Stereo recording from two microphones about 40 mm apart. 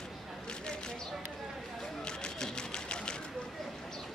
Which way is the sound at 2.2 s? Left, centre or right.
Centre.